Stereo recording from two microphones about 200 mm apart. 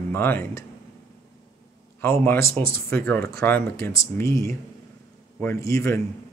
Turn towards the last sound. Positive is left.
turn(degrees=15)  # may be behind; listen again after turning